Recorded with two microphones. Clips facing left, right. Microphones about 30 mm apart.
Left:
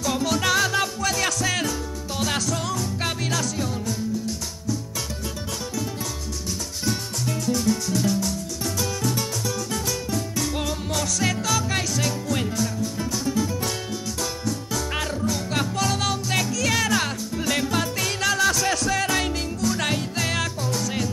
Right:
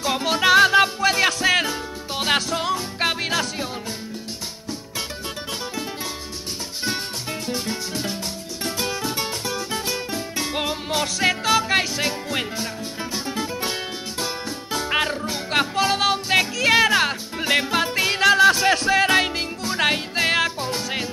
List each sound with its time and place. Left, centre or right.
0.0 s music: right
7.4 s music: right